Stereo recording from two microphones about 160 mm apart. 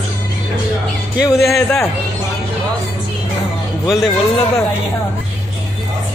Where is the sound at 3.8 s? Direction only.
Centre (ahead or behind).